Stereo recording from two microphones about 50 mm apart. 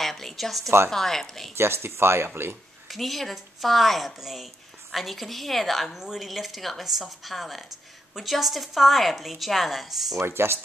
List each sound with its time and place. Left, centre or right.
0.0 s a woman's voice: centre
1.6 s speech: right
2.9 s a woman's voice: centre
10.2 s speech: right